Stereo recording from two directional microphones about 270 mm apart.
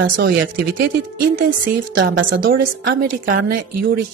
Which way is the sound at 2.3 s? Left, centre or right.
Right.